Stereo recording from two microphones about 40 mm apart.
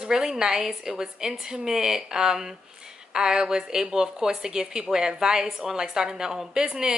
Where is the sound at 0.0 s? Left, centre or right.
Centre.